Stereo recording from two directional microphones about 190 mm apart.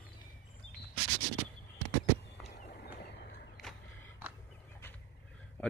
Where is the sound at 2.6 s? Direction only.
55° left (ahead or behind).